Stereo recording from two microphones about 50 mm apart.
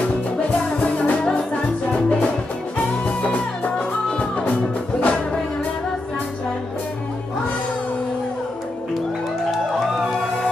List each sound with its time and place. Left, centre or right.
0.7 s music: left